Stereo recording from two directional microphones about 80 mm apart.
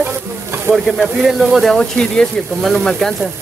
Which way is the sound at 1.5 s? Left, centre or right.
Centre.